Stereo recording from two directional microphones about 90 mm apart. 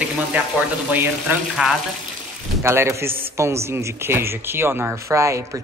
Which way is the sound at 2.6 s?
30° right (ahead or behind).